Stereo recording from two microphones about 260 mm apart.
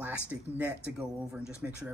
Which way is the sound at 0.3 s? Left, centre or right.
Centre.